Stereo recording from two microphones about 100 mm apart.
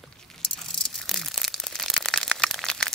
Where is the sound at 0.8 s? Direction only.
5° left (ahead or behind).